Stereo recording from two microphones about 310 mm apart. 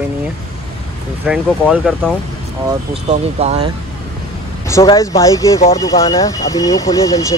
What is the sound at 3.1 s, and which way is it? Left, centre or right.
Speech, centre.